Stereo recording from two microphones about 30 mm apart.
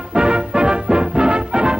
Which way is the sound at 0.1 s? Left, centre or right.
Right.